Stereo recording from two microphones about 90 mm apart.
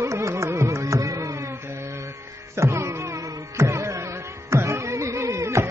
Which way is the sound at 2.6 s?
30° right (ahead or behind).